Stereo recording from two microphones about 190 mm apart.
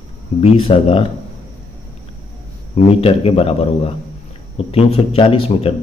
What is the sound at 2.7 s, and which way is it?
A man's voice, 30° left (ahead or behind).